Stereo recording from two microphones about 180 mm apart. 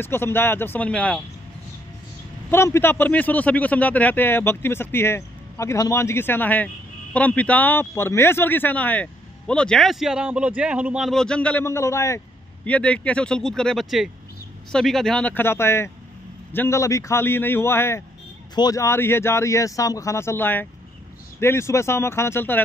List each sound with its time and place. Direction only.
0.0 s a man's voice: 10° left (ahead or behind)
2.5 s a man's voice: 15° left (ahead or behind)